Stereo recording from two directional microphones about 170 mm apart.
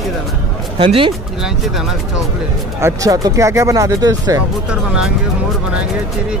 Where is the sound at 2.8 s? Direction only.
15° right (ahead or behind).